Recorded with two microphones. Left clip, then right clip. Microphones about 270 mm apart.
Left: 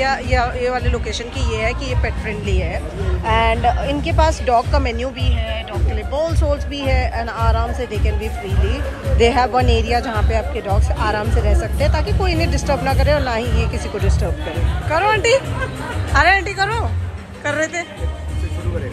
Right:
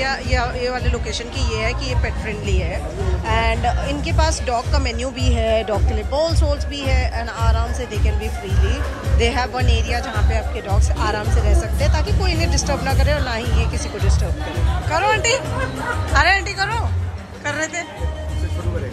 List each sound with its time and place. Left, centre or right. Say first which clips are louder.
0.0 s speech: left 3 dB; centre
5.4 s speech: right 11 dB; centre
6.9 s speech: left 4 dB; centre
9.2 s speech: left 6 dB; centre
14.9 s a woman's voice: left 3 dB; centre